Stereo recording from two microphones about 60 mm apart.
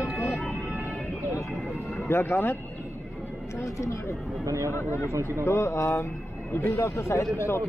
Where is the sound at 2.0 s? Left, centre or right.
Left.